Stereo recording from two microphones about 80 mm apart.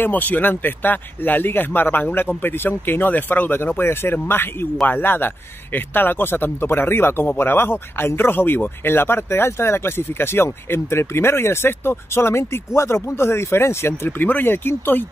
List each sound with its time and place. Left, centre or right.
0.0 s speech: left